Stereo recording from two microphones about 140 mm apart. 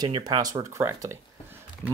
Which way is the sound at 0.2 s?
30° right (ahead or behind).